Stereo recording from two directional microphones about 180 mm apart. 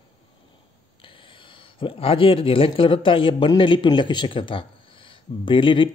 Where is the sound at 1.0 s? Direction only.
30° left (ahead or behind).